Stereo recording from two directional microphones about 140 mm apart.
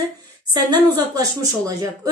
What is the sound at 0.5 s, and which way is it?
A woman's voice, 30° right (ahead or behind).